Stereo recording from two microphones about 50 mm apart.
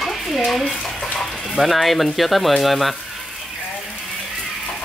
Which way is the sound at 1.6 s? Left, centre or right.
Centre.